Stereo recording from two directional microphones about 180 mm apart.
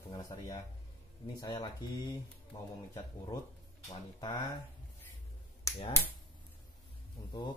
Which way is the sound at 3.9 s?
20° left (ahead or behind).